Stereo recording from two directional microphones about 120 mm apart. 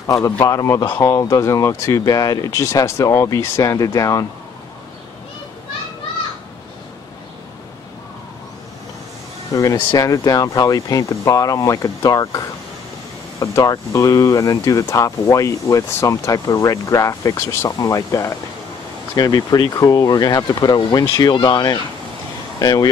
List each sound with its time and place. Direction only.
0.0 s speech: 25° left (ahead or behind)
9.5 s speech: 25° left (ahead or behind)